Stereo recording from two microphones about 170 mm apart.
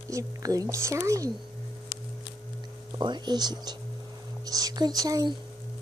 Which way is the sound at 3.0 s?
25° right (ahead or behind).